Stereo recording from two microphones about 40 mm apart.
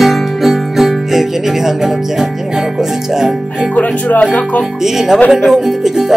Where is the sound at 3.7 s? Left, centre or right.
Left.